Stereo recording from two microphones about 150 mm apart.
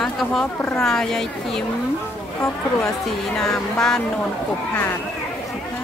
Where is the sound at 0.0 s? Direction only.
5° left (ahead or behind).